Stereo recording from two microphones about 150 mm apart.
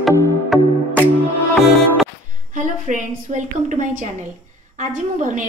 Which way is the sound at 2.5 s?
55° right (ahead or behind).